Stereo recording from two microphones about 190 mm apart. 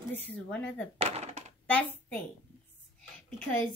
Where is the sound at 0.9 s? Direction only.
35° right (ahead or behind).